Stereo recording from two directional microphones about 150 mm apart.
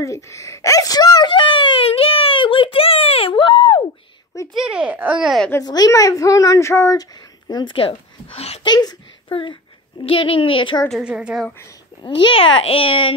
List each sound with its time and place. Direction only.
0.0 s wail: 20° left (ahead or behind)
4.6 s speech: 5° right (ahead or behind)
5.5 s speech: 25° left (ahead or behind); by 8.5 s 40° left (ahead or behind)
8.6 s a child's voice: 30° left (ahead or behind)
10.9 s a woman's voice: 5° right (ahead or behind)
12.0 s a child's voice: 35° left (ahead or behind)